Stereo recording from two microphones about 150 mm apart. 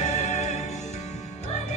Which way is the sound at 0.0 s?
50° left (ahead or behind).